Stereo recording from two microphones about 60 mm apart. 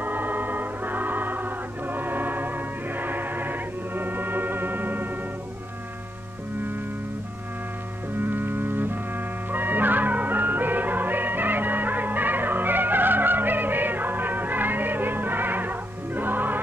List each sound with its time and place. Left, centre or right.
0.0 s music: right
8.2 s music: right